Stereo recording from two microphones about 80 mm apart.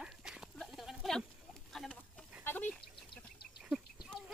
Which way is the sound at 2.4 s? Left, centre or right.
Left.